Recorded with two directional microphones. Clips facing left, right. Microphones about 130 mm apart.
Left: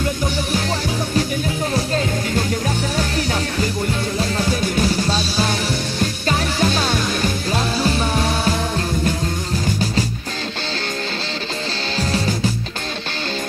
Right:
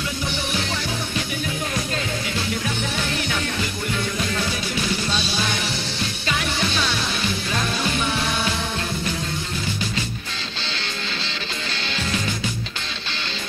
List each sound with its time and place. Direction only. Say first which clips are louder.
4.2 s music: left 5 dB; 40° left (ahead or behind)
12.0 s music: left 6 dB; 40° left (ahead or behind)